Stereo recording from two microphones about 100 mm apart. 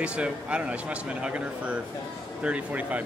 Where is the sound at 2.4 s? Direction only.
15° right (ahead or behind).